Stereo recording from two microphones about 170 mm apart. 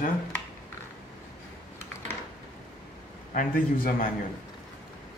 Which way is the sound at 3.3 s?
55° left (ahead or behind).